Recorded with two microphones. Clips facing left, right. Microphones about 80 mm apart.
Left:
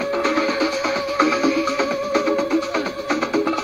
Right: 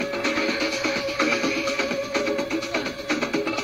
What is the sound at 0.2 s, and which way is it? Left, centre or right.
Music, left.